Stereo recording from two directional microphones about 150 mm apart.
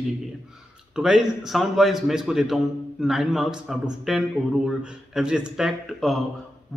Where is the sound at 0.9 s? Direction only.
5° right (ahead or behind).